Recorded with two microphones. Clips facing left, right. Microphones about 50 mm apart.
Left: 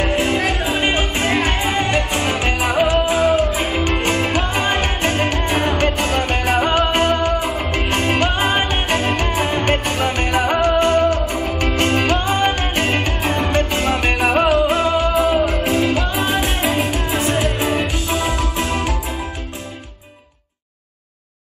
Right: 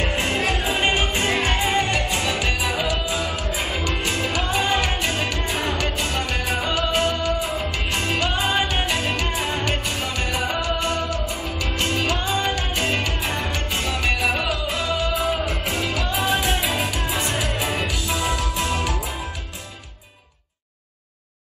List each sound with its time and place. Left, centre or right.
0.0 s music: left